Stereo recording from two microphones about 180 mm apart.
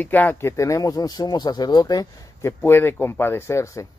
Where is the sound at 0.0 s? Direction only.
10° left (ahead or behind).